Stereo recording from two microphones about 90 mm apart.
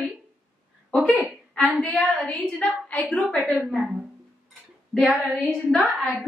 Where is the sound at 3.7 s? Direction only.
5° right (ahead or behind).